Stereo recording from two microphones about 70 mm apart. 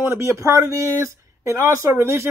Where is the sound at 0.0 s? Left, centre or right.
Right.